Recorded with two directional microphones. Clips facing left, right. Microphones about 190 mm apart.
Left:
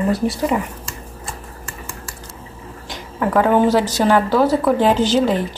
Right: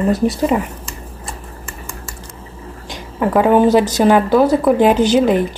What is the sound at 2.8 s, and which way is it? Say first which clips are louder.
A woman's voice: right 3 dB; 20° right (ahead or behind).